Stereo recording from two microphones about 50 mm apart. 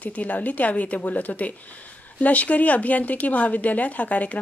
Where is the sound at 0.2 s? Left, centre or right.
Left.